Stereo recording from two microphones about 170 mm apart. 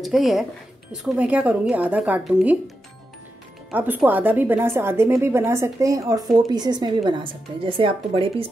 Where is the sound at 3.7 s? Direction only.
10° right (ahead or behind).